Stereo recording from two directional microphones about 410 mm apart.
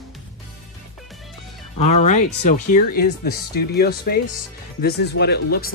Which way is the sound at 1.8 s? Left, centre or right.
Centre.